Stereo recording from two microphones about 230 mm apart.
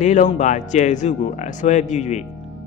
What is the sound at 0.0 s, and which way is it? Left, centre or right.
Speech, left.